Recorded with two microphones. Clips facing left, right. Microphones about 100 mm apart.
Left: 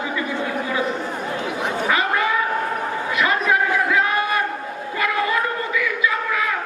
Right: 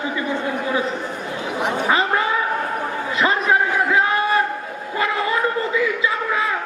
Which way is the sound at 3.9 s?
30° right (ahead or behind).